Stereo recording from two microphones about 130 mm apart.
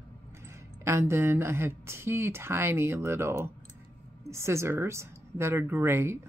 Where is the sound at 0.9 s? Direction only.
20° right (ahead or behind).